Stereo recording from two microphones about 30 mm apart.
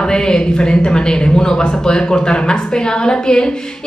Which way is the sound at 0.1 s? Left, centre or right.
Left.